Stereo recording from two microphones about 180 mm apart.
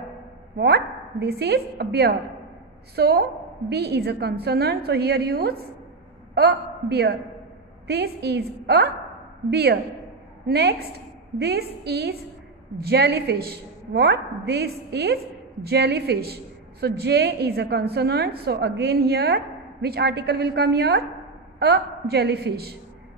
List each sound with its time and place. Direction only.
0.6 s a woman's voice: 65° right (ahead or behind)